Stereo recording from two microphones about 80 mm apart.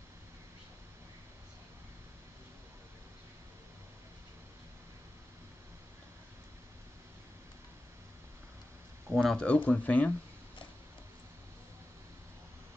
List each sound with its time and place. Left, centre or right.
9.1 s speech: centre
9.5 s speech: centre